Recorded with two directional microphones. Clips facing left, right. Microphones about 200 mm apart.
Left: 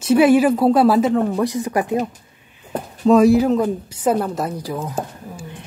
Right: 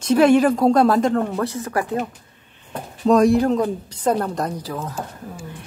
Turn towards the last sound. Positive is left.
turn(degrees=15)  # may be behind; listen again after turning